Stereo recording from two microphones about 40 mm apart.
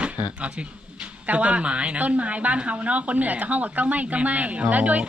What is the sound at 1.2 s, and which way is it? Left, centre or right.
A woman's voice, right.